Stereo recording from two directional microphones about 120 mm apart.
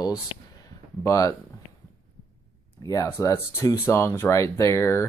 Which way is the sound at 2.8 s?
25° left (ahead or behind).